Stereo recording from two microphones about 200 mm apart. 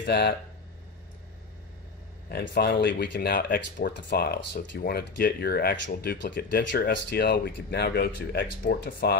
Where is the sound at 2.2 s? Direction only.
55° left (ahead or behind).